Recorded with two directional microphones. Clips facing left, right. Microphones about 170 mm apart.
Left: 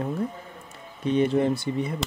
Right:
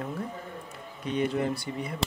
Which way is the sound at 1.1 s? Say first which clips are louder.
Left 6 dB; 30° left (ahead or behind).